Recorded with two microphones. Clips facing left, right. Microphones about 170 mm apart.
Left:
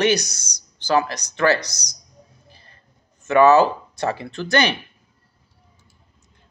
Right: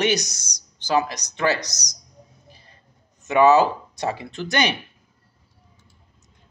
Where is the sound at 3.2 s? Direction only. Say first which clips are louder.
Left 2 dB; 15° right (ahead or behind).